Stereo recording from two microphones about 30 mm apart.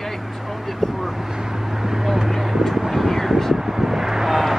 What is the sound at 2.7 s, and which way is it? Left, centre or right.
Speech, centre.